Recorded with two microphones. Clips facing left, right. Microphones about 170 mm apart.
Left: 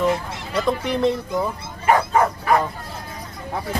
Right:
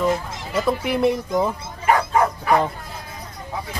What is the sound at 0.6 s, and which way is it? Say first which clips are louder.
Speech: right 1 dB; 5° right (ahead or behind).